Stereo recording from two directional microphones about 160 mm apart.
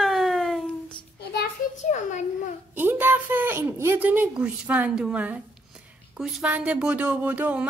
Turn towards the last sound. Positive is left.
turn(degrees=-10)  # may be behind; listen again after turning